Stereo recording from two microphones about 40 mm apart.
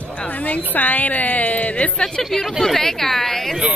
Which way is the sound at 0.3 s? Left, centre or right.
Left.